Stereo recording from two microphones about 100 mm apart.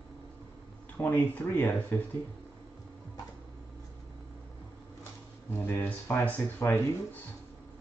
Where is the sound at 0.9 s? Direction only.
20° left (ahead or behind).